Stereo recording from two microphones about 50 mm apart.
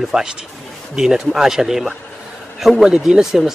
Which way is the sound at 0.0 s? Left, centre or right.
Centre.